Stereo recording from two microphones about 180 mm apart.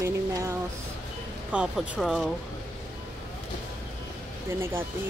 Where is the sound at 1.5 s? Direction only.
5° right (ahead or behind).